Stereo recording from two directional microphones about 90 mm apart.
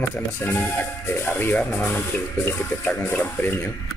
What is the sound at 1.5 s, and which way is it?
Speech, 10° left (ahead or behind).